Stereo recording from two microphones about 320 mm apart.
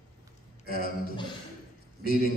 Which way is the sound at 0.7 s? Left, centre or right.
Right.